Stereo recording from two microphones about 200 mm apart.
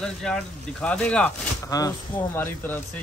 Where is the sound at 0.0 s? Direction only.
5° left (ahead or behind).